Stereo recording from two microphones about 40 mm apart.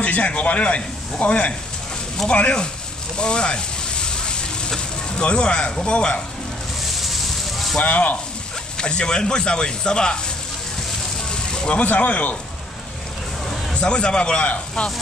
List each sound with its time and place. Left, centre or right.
0.0 s a man's voice: left
3.2 s fire: left
5.8 s speech: left
7.0 s fire: centre
7.8 s a man's voice: left
8.7 s speech: left
11.2 s vehicle: left
11.7 s a man's voice: left
13.7 s speech: left